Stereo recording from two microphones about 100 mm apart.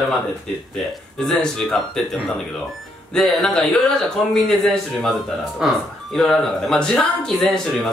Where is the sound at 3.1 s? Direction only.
5° left (ahead or behind).